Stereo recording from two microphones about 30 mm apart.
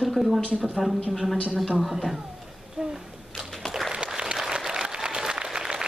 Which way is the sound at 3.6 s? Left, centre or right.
Left.